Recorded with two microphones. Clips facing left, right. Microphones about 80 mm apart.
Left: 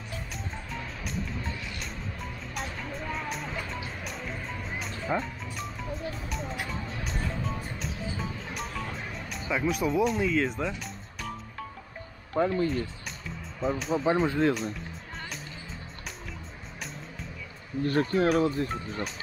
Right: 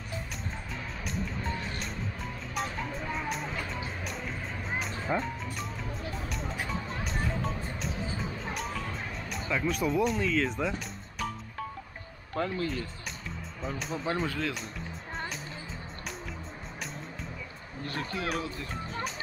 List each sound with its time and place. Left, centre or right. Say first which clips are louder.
1.5 s music: right 2 dB; right
2.5 s music: right 3 dB; centre
9.5 s speech: left 2 dB; centre
12.4 s speech: left 6 dB; centre
13.6 s speech: left 8 dB; centre
14.2 s speech: left 7 dB; left
14.5 s speech: left 9 dB; centre
17.8 s speech: left 10 dB; left